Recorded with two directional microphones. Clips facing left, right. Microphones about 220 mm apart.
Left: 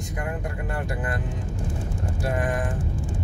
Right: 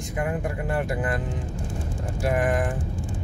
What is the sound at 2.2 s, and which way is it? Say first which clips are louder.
Speech: right 3 dB; 20° right (ahead or behind).